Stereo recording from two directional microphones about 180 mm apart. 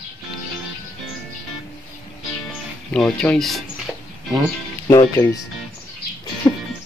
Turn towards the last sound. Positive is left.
turn(degrees=20)  # may be behind; listen again after turning